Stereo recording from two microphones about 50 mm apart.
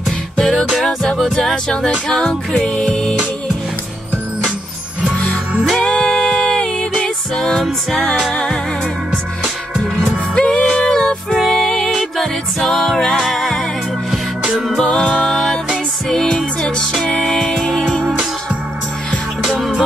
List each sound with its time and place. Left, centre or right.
0.4 s music: centre
2.7 s music: centre
5.7 s music: centre
7.3 s music: centre
8.3 s music: centre
10.3 s music: centre
11.3 s music: centre
11.7 s music: centre
12.0 s music: centre
13.2 s music: centre
14.8 s music: centre
15.2 s music: centre
19.4 s music: centre